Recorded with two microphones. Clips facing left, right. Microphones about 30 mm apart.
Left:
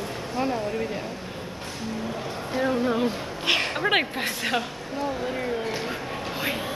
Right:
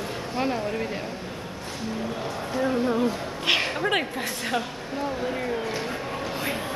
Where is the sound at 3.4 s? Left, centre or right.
Centre.